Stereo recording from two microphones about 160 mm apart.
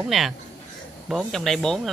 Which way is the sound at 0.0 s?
Centre (ahead or behind).